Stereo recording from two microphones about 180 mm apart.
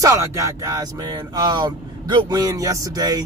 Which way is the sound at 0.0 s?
15° right (ahead or behind).